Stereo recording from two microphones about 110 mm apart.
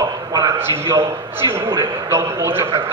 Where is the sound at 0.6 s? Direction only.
25° right (ahead or behind).